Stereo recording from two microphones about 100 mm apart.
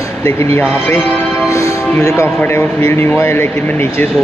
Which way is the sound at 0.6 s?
20° left (ahead or behind).